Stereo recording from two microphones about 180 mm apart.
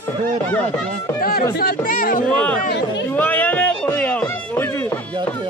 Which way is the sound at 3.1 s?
10° left (ahead or behind).